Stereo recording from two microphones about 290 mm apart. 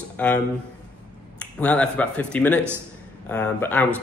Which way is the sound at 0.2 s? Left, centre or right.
Centre.